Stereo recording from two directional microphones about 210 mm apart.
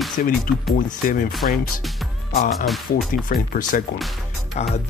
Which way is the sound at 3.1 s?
40° left (ahead or behind).